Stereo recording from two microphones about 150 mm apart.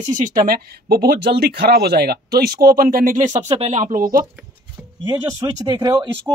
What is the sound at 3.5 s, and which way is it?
Speech, 45° right (ahead or behind).